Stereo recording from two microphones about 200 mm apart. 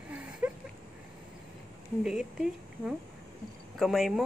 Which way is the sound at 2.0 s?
5° right (ahead or behind).